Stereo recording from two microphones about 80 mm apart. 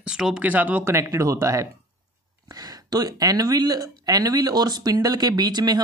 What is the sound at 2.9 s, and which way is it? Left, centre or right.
Speech, right.